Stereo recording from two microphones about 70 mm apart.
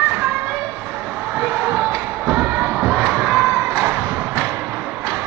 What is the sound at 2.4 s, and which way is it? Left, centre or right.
Music, right.